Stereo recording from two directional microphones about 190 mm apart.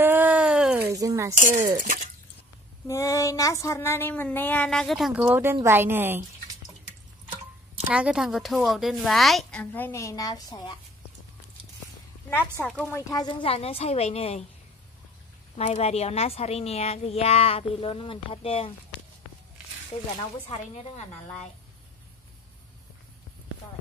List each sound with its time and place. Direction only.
0.0 s a sound: 10° right (ahead or behind)
0.8 s a sound: 15° right (ahead or behind)
1.3 s speech: 45° right (ahead or behind)
2.9 s speech: 15° left (ahead or behind); by 6.2 s 10° right (ahead or behind)
7.9 s a woman's voice: 5° right (ahead or behind); by 10.8 s 20° left (ahead or behind)
12.6 s speech: 5° left (ahead or behind)
13.1 s a woman's voice: 20° left (ahead or behind)
15.5 s a woman's voice: 35° left (ahead or behind)
20.7 s a woman's voice: 35° left (ahead or behind)